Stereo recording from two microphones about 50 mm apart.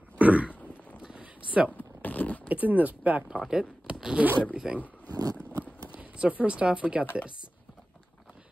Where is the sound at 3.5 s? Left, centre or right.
Centre.